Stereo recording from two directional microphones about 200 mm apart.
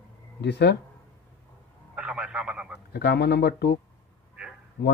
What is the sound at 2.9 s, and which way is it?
Speech, 55° left (ahead or behind).